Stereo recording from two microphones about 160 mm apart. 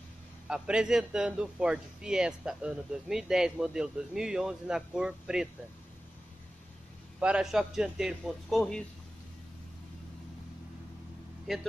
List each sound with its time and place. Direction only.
0.5 s a man's voice: 5° right (ahead or behind)
7.2 s a man's voice: 5° right (ahead or behind)
11.5 s a man's voice: centre (ahead or behind)